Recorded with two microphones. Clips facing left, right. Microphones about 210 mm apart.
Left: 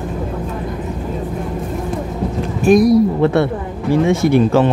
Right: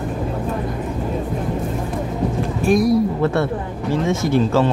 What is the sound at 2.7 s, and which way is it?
Speech, 15° left (ahead or behind).